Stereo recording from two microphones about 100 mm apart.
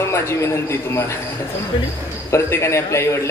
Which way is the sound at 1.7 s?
55° left (ahead or behind).